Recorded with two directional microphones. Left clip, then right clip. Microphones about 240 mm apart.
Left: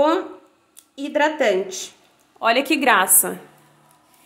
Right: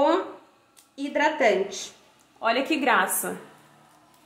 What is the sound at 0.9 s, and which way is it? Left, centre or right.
A woman's voice, left.